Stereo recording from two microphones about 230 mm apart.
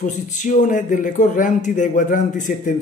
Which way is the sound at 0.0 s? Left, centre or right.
Left.